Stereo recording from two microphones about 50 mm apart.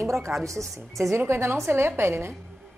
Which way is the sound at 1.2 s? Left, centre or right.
Right.